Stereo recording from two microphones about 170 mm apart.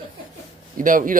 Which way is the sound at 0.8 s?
50° right (ahead or behind).